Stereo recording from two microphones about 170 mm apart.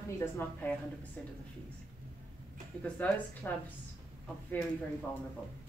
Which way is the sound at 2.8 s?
10° left (ahead or behind).